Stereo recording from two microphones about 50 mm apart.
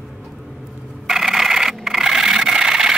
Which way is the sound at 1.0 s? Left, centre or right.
Centre.